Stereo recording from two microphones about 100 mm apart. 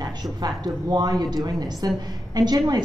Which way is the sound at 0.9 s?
45° right (ahead or behind).